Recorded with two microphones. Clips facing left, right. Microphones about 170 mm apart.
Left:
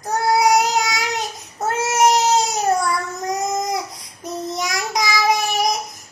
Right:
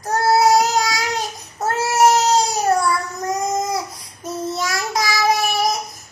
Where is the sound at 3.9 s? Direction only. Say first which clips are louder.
Right 1 dB; 20° left (ahead or behind).